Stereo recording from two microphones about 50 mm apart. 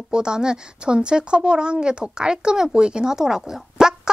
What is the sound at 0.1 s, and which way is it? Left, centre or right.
A woman's voice, centre.